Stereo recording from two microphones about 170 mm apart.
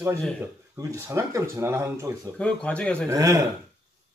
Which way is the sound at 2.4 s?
5° left (ahead or behind).